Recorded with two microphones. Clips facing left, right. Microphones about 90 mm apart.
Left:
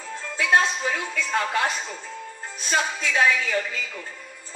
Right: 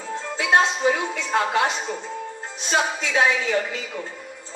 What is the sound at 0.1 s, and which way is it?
Speech, 20° right (ahead or behind).